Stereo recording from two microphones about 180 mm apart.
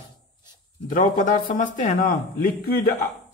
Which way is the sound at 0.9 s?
50° left (ahead or behind).